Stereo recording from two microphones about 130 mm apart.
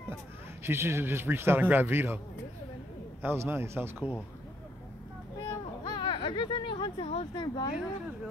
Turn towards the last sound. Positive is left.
turn(degrees=35)  # may be behind; listen again after turning